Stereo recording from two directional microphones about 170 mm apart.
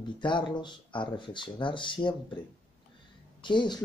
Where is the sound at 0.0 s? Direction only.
25° left (ahead or behind).